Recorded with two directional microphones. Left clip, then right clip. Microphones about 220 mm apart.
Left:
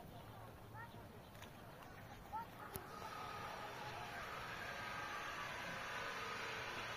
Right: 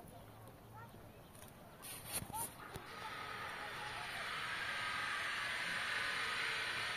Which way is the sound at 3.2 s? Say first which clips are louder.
Right 3 dB; 35° left (ahead or behind).